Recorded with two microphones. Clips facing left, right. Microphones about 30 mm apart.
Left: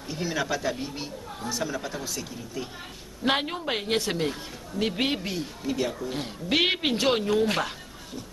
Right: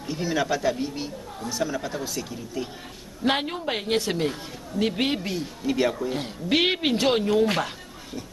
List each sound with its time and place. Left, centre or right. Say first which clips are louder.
0.1 s a woman's voice: right 3 dB; centre
5.7 s speech: right 5 dB; right
5.9 s a woman's voice: right 3 dB; centre